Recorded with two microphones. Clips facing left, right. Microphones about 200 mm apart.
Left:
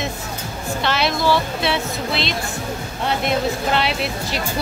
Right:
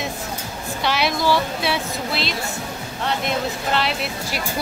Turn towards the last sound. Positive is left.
turn(degrees=0)  # may be behind; listen again after turning